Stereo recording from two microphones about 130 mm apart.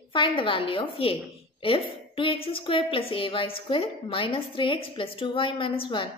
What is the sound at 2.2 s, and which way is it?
A woman's voice, 45° left (ahead or behind).